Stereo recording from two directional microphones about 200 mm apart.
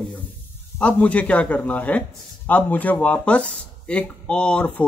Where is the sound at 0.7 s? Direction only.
5° left (ahead or behind).